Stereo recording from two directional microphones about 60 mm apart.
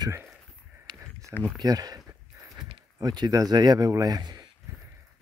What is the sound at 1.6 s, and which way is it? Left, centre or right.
Speech, right.